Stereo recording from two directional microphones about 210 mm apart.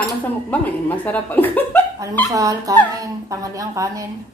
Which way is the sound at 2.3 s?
15° right (ahead or behind).